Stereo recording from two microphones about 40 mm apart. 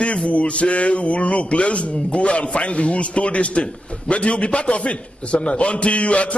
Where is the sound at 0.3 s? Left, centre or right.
Left.